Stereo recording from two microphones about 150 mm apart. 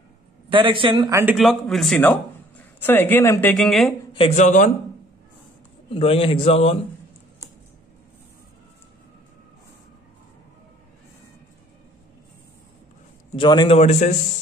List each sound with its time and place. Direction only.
0.5 s a man's voice: 35° right (ahead or behind)
1.3 s a man's voice: centre (ahead or behind)
2.0 s a man's voice: 10° left (ahead or behind)
4.4 s a man's voice: 55° left (ahead or behind)
5.9 s a man's voice: 40° left (ahead or behind)
13.4 s a man's voice: 30° left (ahead or behind)
13.7 s speech: 50° left (ahead or behind)